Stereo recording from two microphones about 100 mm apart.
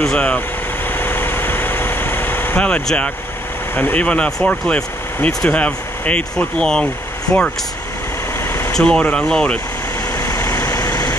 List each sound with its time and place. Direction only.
0.0 s speech: 10° left (ahead or behind)
0.9 s vehicle: 20° left (ahead or behind)
3.7 s speech: 15° left (ahead or behind)
8.5 s vehicle: 25° left (ahead or behind)
8.7 s speech: 10° left (ahead or behind)
10.1 s vehicle: 25° left (ahead or behind)